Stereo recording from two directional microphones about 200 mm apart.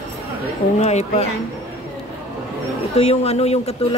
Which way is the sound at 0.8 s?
35° left (ahead or behind).